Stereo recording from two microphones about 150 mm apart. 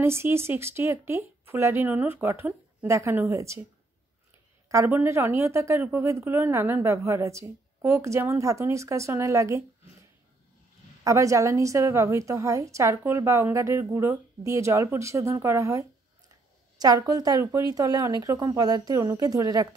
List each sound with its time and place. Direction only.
0.0 s speech: 15° right (ahead or behind)
4.6 s a woman's voice: 15° right (ahead or behind)
11.1 s a woman's voice: 20° right (ahead or behind)
16.7 s a sound: 25° right (ahead or behind)
17.1 s a woman's voice: 25° right (ahead or behind)